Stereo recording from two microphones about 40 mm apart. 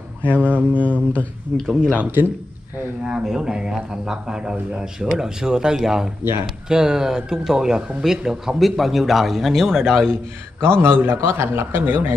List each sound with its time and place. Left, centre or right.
0.2 s speech: left
1.5 s speech: centre
2.0 s a man's voice: right
3.0 s speech: centre
8.6 s a man's voice: centre
10.6 s a man's voice: right